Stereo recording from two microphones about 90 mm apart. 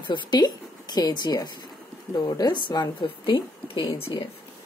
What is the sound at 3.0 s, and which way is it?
Speech, 70° left (ahead or behind).